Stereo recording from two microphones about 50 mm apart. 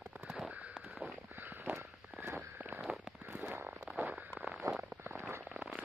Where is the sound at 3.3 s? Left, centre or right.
Right.